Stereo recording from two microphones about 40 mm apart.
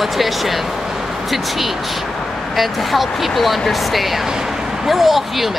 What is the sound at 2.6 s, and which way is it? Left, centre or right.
Speech, centre.